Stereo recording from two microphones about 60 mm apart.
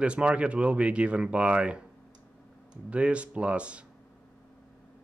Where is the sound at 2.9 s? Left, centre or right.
Right.